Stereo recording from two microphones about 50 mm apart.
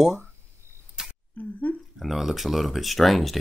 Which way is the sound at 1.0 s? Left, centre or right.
Centre.